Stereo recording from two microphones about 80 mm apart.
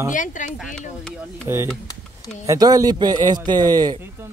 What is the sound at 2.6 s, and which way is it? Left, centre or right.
A man's voice, right.